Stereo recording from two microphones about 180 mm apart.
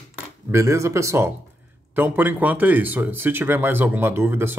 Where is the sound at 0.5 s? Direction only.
15° right (ahead or behind).